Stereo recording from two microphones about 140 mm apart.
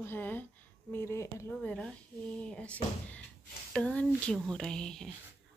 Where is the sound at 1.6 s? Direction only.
5° left (ahead or behind).